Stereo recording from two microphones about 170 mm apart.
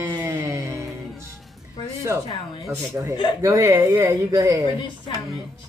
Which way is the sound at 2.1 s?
15° right (ahead or behind).